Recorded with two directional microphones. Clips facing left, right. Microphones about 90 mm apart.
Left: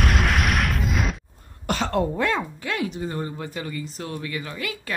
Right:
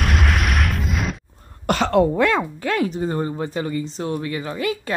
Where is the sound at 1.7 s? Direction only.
85° right.